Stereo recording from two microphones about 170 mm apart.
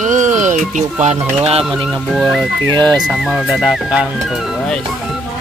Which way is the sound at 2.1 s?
Centre (ahead or behind).